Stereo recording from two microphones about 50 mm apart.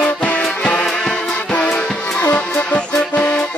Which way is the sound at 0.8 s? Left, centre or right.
Centre.